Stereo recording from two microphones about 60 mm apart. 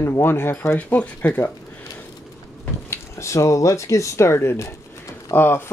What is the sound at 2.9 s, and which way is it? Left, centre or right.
Speech, left.